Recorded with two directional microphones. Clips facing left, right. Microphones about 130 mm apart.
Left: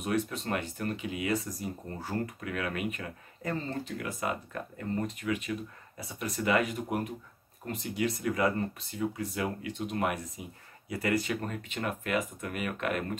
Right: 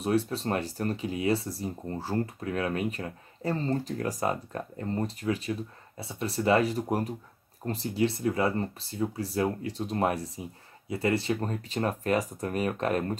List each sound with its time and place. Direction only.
0.0 s speech: 30° right (ahead or behind)